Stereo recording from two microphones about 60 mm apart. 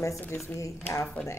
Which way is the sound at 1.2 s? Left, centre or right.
Left.